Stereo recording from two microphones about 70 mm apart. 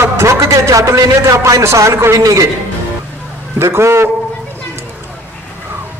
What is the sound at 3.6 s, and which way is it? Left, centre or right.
Speech, right.